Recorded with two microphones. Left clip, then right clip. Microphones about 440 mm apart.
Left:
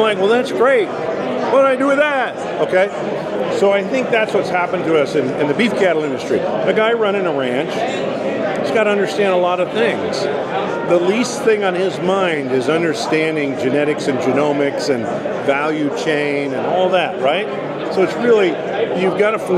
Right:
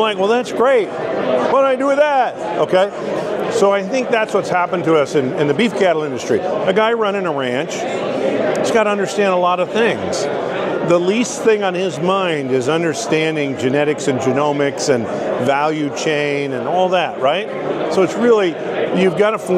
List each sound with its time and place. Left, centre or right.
0.0 s a man's voice: right
3.5 s speech: right
8.7 s speech: right
15.5 s speech: right
18.9 s speech: right